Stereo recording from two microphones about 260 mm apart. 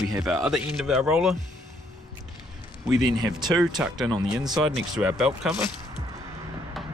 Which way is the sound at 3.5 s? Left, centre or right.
Centre.